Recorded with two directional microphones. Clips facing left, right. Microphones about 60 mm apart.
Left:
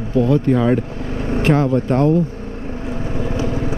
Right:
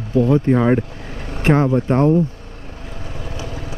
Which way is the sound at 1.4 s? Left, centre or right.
Right.